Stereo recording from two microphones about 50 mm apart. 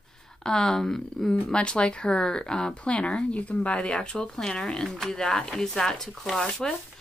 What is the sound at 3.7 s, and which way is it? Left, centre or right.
Speech, centre.